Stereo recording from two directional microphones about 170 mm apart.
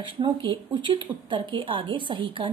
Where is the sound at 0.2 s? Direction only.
30° right (ahead or behind).